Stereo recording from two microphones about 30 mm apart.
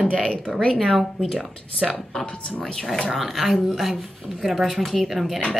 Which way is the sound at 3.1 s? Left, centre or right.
Centre.